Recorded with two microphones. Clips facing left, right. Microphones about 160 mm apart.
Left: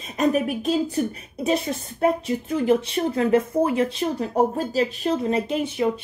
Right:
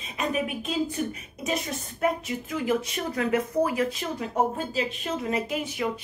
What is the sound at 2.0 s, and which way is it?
Speech, 30° left (ahead or behind).